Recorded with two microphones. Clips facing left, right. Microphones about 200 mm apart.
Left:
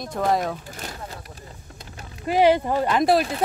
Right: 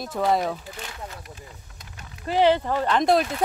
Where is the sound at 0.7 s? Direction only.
40° left (ahead or behind).